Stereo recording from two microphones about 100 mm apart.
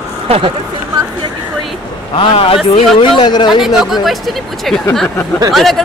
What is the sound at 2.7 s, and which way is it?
Speech, 75° left (ahead or behind).